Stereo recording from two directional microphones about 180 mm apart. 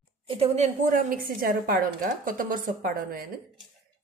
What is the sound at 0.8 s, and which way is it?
A woman's voice, 50° right (ahead or behind).